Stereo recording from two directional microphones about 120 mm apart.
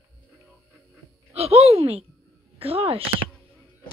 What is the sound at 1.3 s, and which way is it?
Speech, 60° right (ahead or behind).